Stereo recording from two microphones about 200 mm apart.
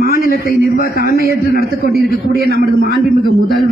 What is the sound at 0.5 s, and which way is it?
A man's voice, 50° left (ahead or behind).